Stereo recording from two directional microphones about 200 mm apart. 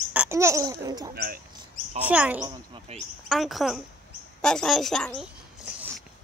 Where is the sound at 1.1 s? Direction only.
50° right (ahead or behind).